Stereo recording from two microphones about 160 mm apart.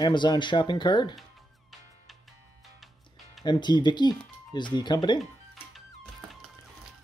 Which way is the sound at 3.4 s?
25° left (ahead or behind).